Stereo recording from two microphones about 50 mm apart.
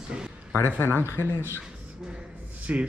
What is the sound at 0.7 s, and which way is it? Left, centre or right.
Speech, left.